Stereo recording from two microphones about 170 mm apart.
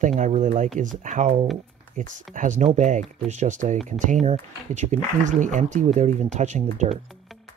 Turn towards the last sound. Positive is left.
turn(degrees=-45)  # may be behind; listen again after turning